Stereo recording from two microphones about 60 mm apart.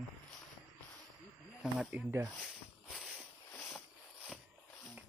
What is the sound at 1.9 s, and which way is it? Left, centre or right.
Speech, right.